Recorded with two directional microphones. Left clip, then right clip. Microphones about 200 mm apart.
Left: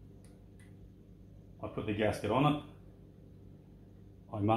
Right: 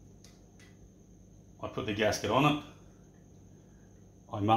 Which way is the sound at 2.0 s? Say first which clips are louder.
Right 3 dB; 30° right (ahead or behind).